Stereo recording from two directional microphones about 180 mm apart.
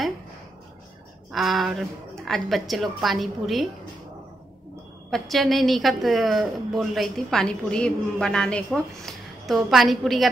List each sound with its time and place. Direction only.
1.3 s a woman's voice: centre (ahead or behind)
5.1 s a woman's voice: centre (ahead or behind)